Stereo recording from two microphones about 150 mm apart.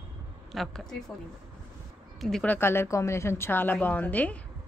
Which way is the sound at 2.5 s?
15° left (ahead or behind).